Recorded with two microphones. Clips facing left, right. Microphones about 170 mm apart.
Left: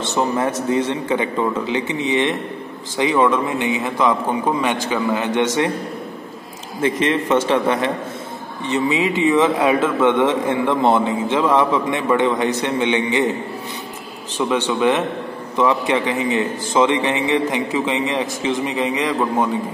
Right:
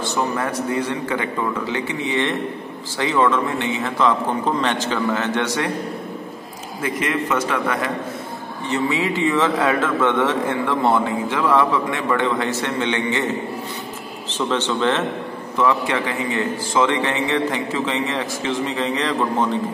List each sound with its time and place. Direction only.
0.0 s a man's voice: 25° left (ahead or behind)
6.8 s a man's voice: 25° left (ahead or behind)
14.3 s a man's voice: 10° left (ahead or behind)